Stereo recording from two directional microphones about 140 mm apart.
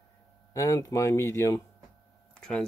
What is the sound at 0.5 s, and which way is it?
Speech, 20° left (ahead or behind).